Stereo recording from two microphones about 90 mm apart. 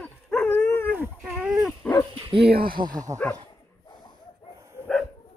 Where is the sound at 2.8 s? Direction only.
65° right (ahead or behind).